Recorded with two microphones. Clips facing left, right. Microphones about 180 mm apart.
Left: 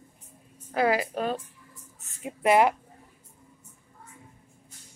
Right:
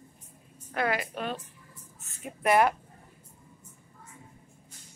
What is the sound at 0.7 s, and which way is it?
Speech, 30° left (ahead or behind).